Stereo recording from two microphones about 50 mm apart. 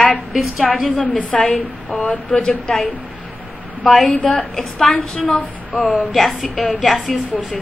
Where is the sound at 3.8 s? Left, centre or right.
Centre.